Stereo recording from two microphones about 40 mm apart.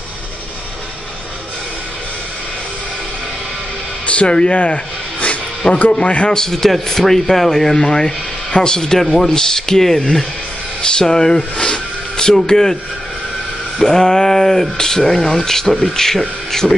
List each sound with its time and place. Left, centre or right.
4.1 s speech: left
5.6 s speech: left
6.2 s speech: centre
13.8 s speech: centre